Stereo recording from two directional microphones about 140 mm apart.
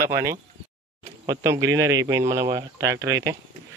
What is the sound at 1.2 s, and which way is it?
A man's voice, 25° right (ahead or behind).